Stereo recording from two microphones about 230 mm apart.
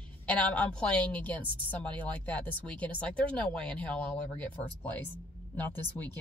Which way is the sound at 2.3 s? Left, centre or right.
Centre.